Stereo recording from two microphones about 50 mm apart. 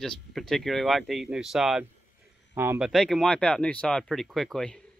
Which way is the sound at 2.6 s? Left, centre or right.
Right.